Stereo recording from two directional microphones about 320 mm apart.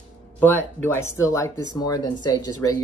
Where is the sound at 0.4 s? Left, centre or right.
Centre.